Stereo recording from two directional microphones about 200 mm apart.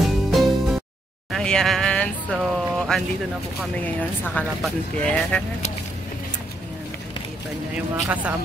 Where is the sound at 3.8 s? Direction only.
5° left (ahead or behind).